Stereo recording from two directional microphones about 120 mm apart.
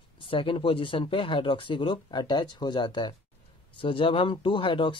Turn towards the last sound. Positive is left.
turn(degrees=45)  # may be behind; listen again after turning